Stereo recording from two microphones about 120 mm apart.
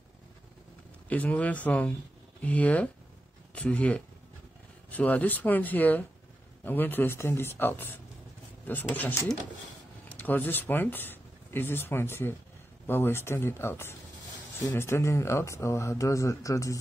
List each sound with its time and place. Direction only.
1.0 s a man's voice: 10° left (ahead or behind); by 16.8 s 25° left (ahead or behind)